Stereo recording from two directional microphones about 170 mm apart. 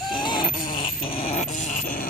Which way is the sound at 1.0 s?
35° left (ahead or behind).